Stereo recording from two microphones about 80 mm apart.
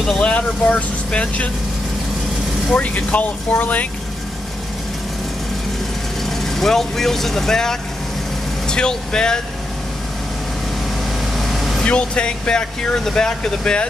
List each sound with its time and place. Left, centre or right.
0.2 s speech: centre
2.7 s speech: centre
6.2 s speech: centre
11.3 s vehicle: centre
11.8 s speech: centre